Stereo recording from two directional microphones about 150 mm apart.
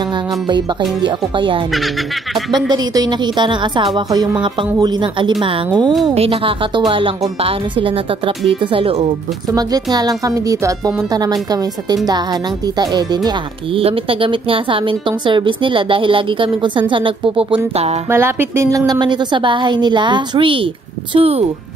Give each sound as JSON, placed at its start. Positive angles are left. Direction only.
{"t": 1.0, "sound": "a woman's voice", "side_deg": -35}
{"t": 6.0, "sound": "a woman's voice", "side_deg": -40}
{"t": 9.5, "sound": "a woman's voice", "side_deg": -25}
{"t": 18.1, "sound": "a woman's voice", "side_deg": -15}